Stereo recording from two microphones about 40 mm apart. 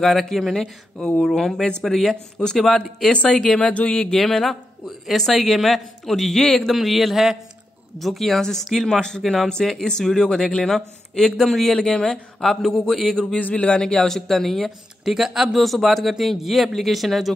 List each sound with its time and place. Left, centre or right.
0.0 s a man's voice: centre
1.8 s a man's voice: centre
3.4 s speech: left
4.3 s a man's voice: centre
6.7 s a man's voice: centre
9.8 s a man's voice: centre
11.7 s speech: left
12.4 s a man's voice: centre
13.4 s speech: left
13.7 s speech: left
13.9 s a man's voice: centre
15.0 s a man's voice: centre